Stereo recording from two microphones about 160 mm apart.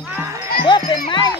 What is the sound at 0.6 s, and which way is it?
Music, 30° left (ahead or behind).